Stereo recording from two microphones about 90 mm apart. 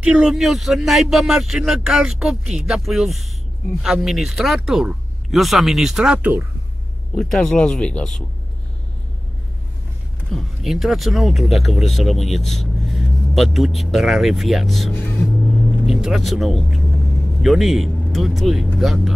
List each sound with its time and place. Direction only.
0.0 s speech: 10° right (ahead or behind)
7.2 s speech: 5° left (ahead or behind)
10.3 s speech: centre (ahead or behind)
14.9 s speech: 20° left (ahead or behind)
15.8 s speech: 5° right (ahead or behind)